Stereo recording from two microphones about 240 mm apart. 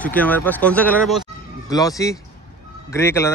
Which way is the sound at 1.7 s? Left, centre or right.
Centre.